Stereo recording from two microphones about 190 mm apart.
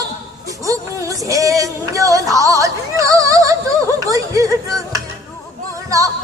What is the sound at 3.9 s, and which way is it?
Music, 15° right (ahead or behind).